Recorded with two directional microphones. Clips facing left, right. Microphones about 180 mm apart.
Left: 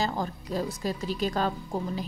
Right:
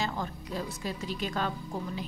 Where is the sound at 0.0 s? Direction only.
40° left (ahead or behind).